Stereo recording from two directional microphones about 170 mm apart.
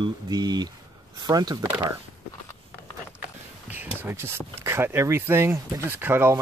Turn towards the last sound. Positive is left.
turn(degrees=-15)  # may be behind; listen again after turning